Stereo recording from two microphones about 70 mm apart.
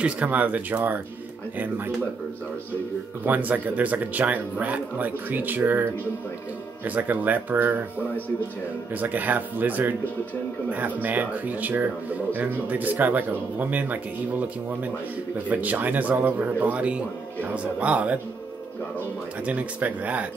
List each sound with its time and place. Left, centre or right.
0.0 s a man's voice: right
3.3 s a man's voice: right
9.0 s a man's voice: right
15.3 s a man's voice: right
19.4 s a man's voice: right